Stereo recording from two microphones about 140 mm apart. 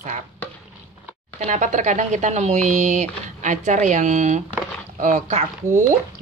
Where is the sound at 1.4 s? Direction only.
60° right (ahead or behind).